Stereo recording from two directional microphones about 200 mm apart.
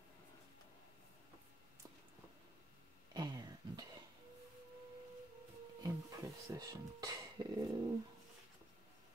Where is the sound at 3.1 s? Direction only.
20° right (ahead or behind).